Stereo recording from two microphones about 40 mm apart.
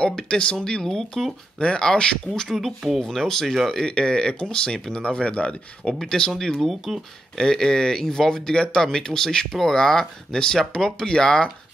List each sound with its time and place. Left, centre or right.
0.0 s speech: left
0.8 s speech: centre
1.6 s speech: left
2.5 s speech: centre
3.0 s speech: centre
5.0 s speech: left
5.9 s speech: centre
9.5 s speech: centre